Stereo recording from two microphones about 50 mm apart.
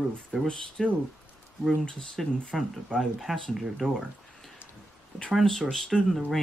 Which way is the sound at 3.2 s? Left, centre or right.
Centre.